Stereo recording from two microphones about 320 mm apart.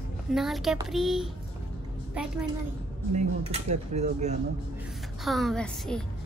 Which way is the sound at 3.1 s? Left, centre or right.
Centre.